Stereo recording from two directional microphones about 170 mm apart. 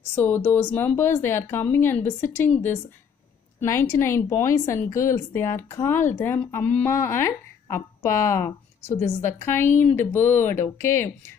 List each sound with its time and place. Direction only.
0.1 s speech: 10° left (ahead or behind)